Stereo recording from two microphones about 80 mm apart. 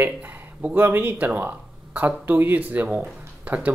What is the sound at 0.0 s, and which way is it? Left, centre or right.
Speech, centre.